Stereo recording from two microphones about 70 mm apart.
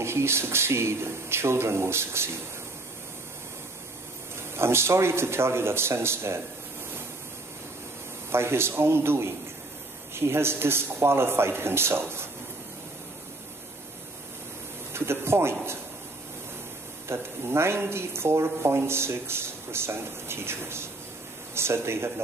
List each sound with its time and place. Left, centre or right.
0.0 s speech: right
4.6 s speech: right
8.3 s speech: right
14.9 s speech: right
17.1 s speech: right